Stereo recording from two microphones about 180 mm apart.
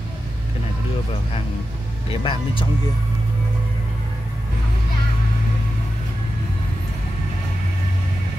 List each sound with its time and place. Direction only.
2.0 s speech: 30° left (ahead or behind)